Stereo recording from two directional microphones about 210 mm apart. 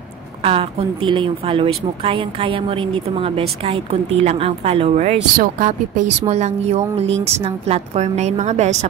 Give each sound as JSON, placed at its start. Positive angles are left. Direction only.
{"t": 0.4, "sound": "a woman's voice", "side_deg": -25}